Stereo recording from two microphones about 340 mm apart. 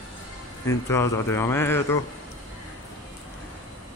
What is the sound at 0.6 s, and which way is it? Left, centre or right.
Speech, centre.